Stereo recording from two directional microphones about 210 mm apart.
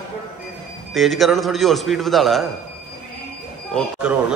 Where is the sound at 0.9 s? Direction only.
Centre (ahead or behind).